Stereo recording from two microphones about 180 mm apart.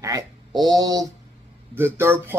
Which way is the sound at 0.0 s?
20° right (ahead or behind).